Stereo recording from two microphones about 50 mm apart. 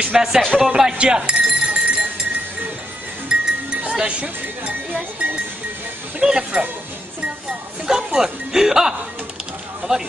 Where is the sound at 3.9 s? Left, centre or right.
Right.